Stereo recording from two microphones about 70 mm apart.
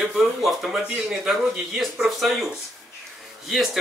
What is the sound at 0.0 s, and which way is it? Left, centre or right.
Speech, centre.